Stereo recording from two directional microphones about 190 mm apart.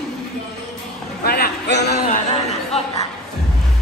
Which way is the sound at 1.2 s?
55° left (ahead or behind).